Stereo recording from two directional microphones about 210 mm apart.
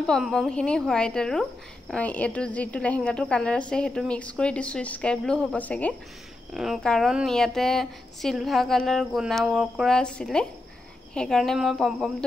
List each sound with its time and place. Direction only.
0.0 s speech: 5° left (ahead or behind)